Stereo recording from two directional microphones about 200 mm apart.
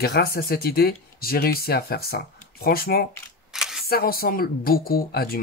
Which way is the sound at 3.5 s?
Centre (ahead or behind).